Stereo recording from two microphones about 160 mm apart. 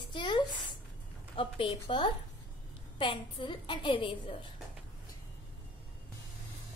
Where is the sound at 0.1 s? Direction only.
30° left (ahead or behind).